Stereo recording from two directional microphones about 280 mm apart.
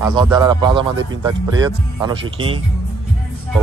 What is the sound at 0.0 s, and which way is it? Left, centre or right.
Speech, centre.